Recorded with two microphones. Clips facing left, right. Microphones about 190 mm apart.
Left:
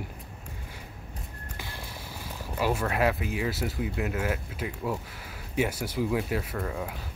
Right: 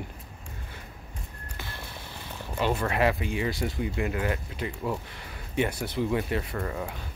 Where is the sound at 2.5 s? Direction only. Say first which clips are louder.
Right 1 dB; 5° left (ahead or behind).